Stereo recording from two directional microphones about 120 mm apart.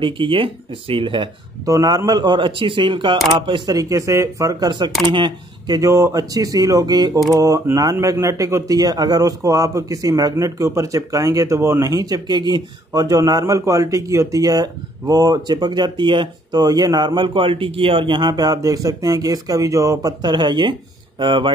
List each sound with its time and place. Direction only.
0.0 s speech: 45° right (ahead or behind)
1.7 s speech: 30° right (ahead or behind)
5.8 s a man's voice: 25° right (ahead or behind); by 21.5 s 40° right (ahead or behind)